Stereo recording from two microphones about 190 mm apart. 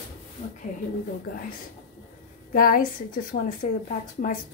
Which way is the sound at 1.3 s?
45° left (ahead or behind).